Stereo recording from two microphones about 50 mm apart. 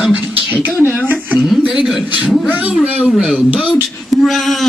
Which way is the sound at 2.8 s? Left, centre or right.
Right.